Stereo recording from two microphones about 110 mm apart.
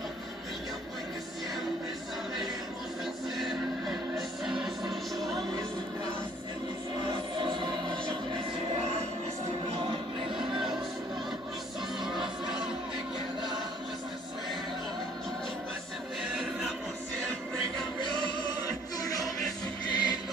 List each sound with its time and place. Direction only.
3.3 s music: centre (ahead or behind)
7.1 s music: 45° right (ahead or behind)
9.8 s music: 50° right (ahead or behind)
12.0 s music: 5° right (ahead or behind)
16.2 s music: centre (ahead or behind)
18.9 s music: 35° left (ahead or behind)